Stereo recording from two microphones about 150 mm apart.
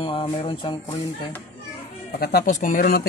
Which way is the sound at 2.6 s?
75° left (ahead or behind).